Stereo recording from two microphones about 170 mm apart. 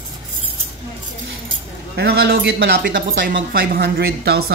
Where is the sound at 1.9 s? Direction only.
70° right (ahead or behind).